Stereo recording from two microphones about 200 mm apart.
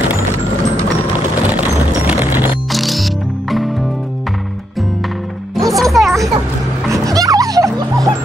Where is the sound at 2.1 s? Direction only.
10° right (ahead or behind).